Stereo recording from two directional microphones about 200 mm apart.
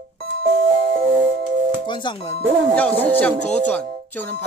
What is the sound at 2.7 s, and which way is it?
A man's voice, 10° left (ahead or behind).